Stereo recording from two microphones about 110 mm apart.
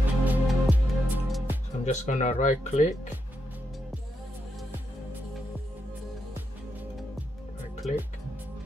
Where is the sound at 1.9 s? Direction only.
90° left.